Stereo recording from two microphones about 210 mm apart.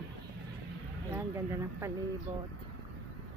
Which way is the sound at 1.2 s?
10° right (ahead or behind).